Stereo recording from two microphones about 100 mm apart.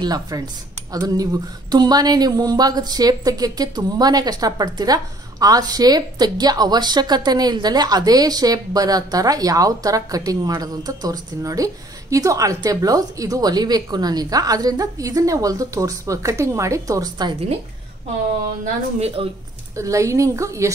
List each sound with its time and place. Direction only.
0.0 s speech: 40° right (ahead or behind)
18.9 s speech: 90° right
19.7 s speech: 30° right (ahead or behind)